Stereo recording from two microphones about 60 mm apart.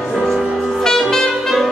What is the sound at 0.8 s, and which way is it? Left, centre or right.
Saxophone, centre.